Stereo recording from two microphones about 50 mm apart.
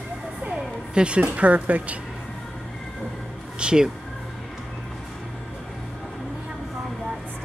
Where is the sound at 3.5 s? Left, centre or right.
Centre.